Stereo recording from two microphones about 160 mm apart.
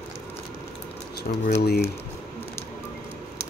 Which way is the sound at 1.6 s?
85° left.